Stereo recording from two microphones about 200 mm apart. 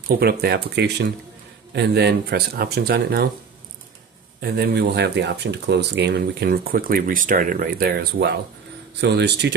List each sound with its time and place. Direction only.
0.1 s speech: 50° right (ahead or behind)
4.4 s speech: 55° right (ahead or behind)